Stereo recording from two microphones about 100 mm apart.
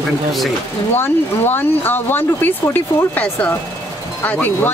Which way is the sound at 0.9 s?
25° left (ahead or behind).